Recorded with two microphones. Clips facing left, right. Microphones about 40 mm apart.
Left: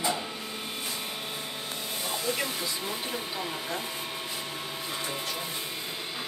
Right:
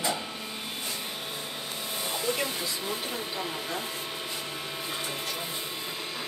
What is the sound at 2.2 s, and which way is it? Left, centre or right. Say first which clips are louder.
Speech: right 1 dB; centre.